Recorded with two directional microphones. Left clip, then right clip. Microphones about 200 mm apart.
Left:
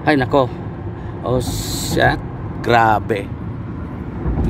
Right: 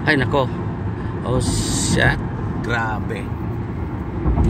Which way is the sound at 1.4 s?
35° right (ahead or behind).